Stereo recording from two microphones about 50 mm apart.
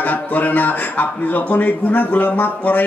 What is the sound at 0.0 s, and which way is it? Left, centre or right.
Speech, left.